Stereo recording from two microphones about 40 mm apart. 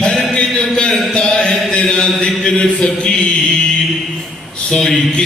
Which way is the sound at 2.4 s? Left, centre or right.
Centre.